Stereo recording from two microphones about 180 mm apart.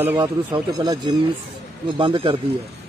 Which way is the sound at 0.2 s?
20° right (ahead or behind).